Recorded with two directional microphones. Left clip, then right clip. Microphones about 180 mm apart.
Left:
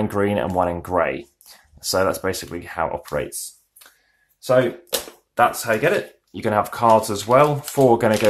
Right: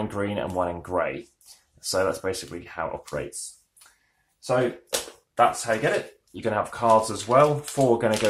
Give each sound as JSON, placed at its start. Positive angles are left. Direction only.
{"t": 0.0, "sound": "speech", "side_deg": 30}
{"t": 5.3, "sound": "speech", "side_deg": 45}